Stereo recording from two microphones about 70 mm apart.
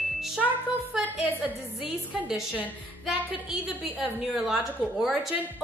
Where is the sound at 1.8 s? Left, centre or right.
Centre.